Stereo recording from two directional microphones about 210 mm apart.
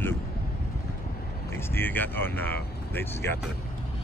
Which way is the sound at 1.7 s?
10° left (ahead or behind).